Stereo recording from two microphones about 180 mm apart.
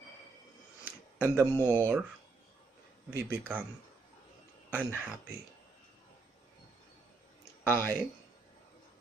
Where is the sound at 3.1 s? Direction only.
10° right (ahead or behind).